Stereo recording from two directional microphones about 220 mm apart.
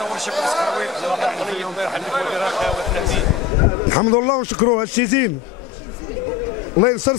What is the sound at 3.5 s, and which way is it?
A man's voice, 20° left (ahead or behind).